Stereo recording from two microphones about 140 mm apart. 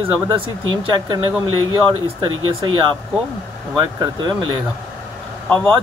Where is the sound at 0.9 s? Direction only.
35° right (ahead or behind).